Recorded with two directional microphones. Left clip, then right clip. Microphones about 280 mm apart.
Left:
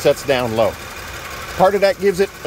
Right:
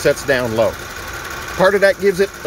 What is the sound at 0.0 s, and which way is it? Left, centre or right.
Speech, centre.